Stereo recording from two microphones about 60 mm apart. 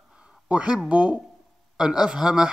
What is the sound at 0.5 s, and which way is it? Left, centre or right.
Speech, centre.